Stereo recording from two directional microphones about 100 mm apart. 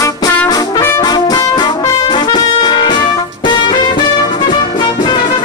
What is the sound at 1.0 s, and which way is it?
Music, 40° left (ahead or behind).